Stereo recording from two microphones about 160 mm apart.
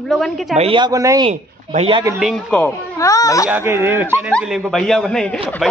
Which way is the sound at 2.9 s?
20° left (ahead or behind).